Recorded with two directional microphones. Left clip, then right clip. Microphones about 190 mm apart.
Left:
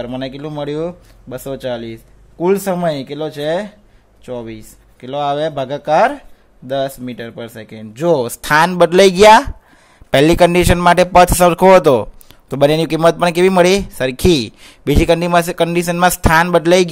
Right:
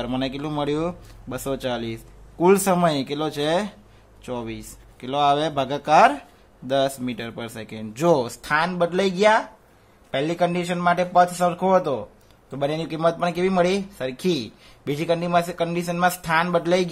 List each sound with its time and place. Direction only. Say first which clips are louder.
0.0 s speech: left 3 dB; 15° left (ahead or behind)
8.3 s a man's voice: left 10 dB; 45° left (ahead or behind)